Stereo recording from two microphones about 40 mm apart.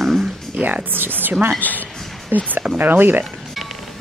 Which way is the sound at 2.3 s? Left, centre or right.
Right.